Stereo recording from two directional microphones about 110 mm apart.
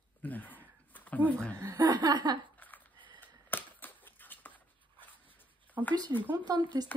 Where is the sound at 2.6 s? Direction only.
15° left (ahead or behind).